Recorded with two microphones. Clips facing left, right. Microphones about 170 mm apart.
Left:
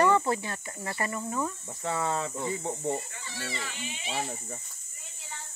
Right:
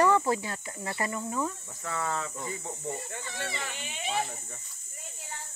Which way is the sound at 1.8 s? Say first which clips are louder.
Left 3 dB; 25° left (ahead or behind).